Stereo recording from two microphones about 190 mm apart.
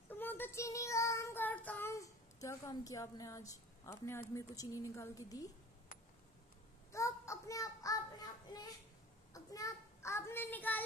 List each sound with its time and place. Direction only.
0.1 s child singing: 10° left (ahead or behind)
6.9 s child singing: 15° left (ahead or behind)